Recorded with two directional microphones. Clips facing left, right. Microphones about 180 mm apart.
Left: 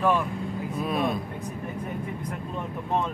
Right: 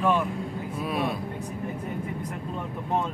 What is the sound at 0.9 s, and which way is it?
Speech, 10° right (ahead or behind).